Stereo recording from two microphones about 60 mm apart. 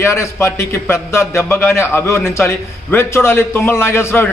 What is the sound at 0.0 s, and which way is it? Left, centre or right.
A man's voice, left.